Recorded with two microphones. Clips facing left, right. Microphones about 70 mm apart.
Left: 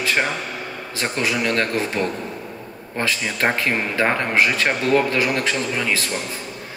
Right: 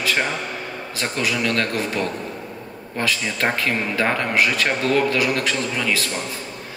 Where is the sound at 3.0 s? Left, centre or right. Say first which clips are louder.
Left 1 dB; left.